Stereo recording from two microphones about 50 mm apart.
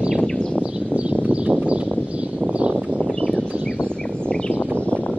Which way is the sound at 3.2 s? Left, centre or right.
Left.